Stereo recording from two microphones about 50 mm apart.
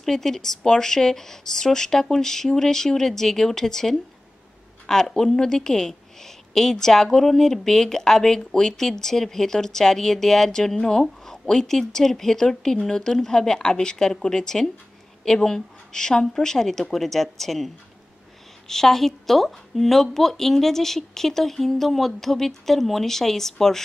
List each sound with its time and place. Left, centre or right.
0.0 s a woman's voice: centre
18.7 s a woman's voice: centre